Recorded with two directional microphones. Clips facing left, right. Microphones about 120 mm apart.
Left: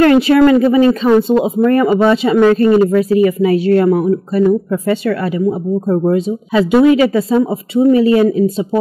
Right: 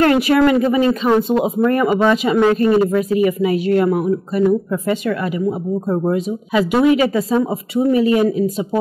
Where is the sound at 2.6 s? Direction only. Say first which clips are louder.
Left 4 dB; 25° right (ahead or behind).